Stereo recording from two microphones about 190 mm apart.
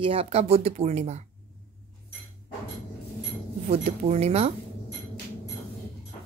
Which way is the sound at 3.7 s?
35° right (ahead or behind).